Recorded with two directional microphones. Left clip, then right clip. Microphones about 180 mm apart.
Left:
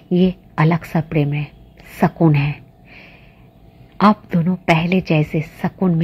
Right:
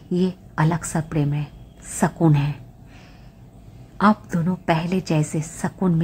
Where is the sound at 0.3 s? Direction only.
10° left (ahead or behind).